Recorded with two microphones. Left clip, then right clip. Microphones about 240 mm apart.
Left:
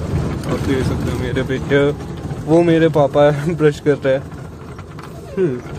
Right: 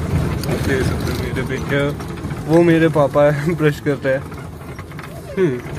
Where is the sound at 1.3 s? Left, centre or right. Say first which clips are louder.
Left 5 dB; left.